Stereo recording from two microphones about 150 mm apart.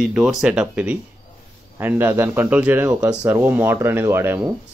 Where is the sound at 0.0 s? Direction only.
Centre (ahead or behind).